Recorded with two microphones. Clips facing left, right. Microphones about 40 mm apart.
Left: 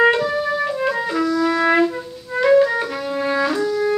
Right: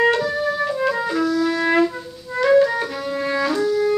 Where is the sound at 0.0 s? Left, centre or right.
Centre.